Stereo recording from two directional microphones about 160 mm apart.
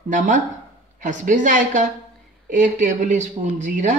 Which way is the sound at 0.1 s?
50° right (ahead or behind).